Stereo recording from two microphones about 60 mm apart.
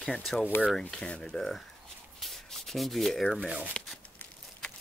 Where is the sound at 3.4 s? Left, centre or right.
Right.